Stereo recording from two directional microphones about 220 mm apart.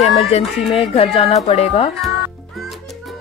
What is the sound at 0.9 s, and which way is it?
Speech, 25° left (ahead or behind).